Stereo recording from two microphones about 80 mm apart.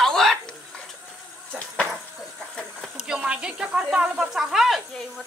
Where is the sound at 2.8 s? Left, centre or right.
Centre.